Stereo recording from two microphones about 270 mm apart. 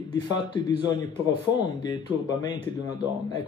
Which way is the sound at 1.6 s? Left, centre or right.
Centre.